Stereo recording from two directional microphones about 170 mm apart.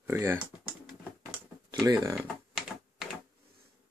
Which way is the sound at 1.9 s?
20° right (ahead or behind).